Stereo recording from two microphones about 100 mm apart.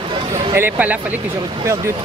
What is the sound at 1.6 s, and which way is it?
Speech, 30° right (ahead or behind).